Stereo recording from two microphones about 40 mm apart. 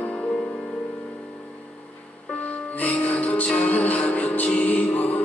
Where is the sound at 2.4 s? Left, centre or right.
Left.